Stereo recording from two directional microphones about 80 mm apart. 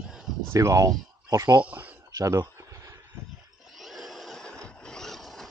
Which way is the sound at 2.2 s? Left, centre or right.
Right.